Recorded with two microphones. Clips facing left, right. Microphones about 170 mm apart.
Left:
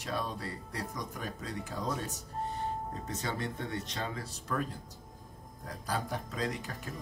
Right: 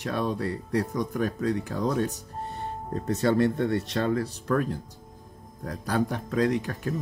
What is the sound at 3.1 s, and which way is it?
Speech, 65° right (ahead or behind).